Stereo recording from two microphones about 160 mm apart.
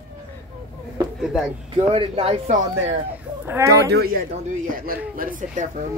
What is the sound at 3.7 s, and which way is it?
Speech, 80° right.